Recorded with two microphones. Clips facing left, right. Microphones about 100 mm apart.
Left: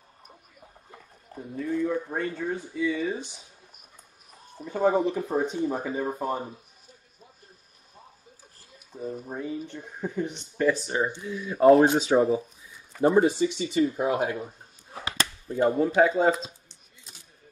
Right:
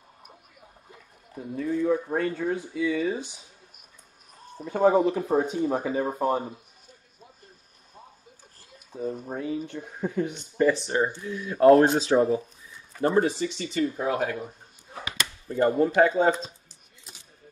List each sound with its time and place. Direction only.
1.4 s speech: 10° right (ahead or behind)
2.9 s speech: centre (ahead or behind)
4.6 s speech: centre (ahead or behind)
9.0 s speech: centre (ahead or behind)
13.9 s speech: 30° left (ahead or behind)
15.4 s speech: centre (ahead or behind)
16.0 s a sound: centre (ahead or behind)